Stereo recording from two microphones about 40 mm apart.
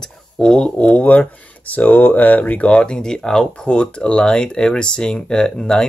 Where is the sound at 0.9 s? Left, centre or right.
Left; by 3.5 s centre.